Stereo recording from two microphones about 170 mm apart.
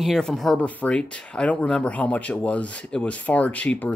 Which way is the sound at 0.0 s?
Centre (ahead or behind).